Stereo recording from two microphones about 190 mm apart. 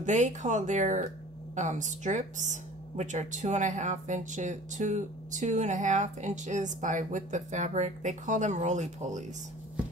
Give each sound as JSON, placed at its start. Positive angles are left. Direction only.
{"t": 0.0, "sound": "speech", "side_deg": -40}